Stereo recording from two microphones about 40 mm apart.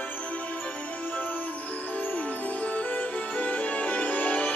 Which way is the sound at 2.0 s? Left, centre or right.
Left.